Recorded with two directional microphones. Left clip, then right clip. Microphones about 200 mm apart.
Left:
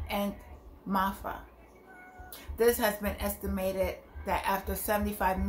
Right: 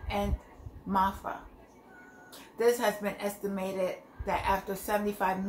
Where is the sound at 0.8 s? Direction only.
5° left (ahead or behind).